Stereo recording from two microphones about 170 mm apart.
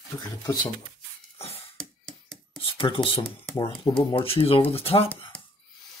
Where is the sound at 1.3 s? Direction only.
35° left (ahead or behind).